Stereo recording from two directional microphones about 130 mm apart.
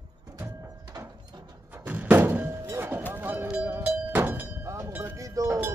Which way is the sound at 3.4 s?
10° right (ahead or behind).